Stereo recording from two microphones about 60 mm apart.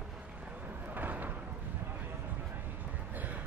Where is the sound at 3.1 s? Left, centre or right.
Right.